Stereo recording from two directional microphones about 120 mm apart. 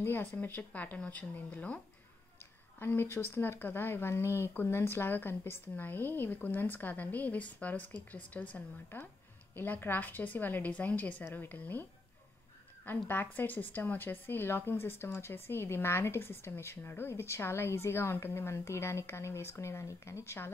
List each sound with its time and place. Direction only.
0.0 s speech: 15° left (ahead or behind)
2.8 s speech: 20° left (ahead or behind)
12.8 s speech: 15° left (ahead or behind)